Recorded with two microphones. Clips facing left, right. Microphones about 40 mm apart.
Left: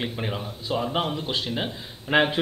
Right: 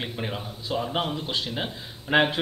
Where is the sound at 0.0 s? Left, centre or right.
Centre.